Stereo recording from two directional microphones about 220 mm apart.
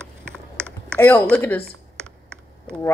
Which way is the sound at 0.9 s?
5° left (ahead or behind).